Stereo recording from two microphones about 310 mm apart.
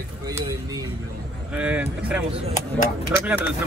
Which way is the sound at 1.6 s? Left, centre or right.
Centre.